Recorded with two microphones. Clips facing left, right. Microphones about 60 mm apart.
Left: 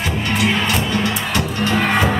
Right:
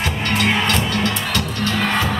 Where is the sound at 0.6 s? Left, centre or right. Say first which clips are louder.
Even; centre.